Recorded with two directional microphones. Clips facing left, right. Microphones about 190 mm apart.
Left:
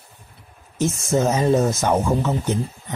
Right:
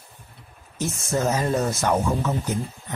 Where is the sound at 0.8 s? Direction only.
20° left (ahead or behind).